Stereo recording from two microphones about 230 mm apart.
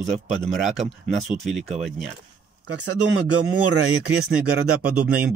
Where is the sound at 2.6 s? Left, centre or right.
Right.